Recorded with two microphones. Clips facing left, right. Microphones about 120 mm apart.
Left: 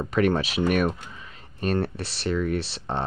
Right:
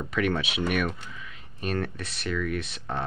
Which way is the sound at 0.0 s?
40° left (ahead or behind).